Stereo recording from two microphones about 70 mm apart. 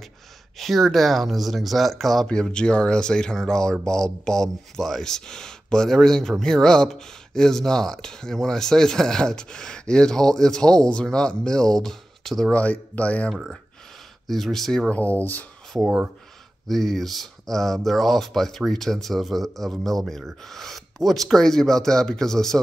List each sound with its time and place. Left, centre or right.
0.6 s speech: centre
2.2 s speech: centre
12.5 s speech: left
14.2 s speech: centre
14.9 s speech: left
16.6 s speech: centre